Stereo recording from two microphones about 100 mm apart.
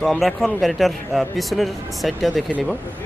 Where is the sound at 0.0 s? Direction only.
Centre (ahead or behind).